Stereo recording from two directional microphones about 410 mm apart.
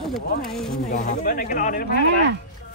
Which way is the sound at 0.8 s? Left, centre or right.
Centre.